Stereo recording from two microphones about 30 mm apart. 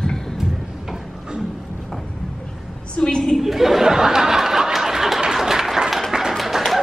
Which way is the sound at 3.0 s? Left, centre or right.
Left.